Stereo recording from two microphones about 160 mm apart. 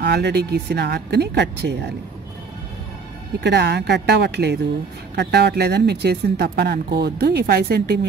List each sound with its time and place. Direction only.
0.0 s speech: 90° right
3.3 s speech: 90° right